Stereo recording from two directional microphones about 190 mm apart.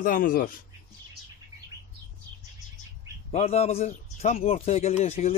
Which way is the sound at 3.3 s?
35° left (ahead or behind).